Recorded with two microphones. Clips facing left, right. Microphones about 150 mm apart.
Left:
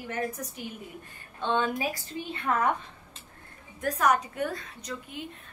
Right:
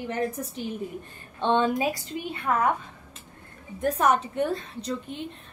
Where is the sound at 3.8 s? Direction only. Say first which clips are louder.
Right 3 dB; 25° right (ahead or behind).